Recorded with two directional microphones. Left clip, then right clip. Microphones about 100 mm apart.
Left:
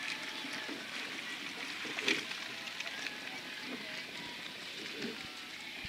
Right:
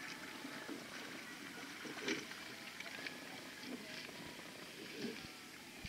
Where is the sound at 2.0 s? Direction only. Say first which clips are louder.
Left 9 dB; 35° left (ahead or behind).